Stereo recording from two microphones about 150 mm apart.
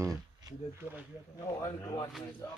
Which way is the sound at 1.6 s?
25° left (ahead or behind).